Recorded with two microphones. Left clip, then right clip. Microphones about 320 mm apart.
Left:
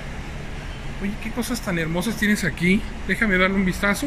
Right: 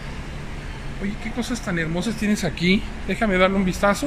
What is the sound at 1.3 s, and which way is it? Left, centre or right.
Speech, centre.